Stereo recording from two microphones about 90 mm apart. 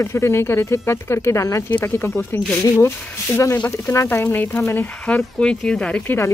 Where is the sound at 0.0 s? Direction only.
30° left (ahead or behind).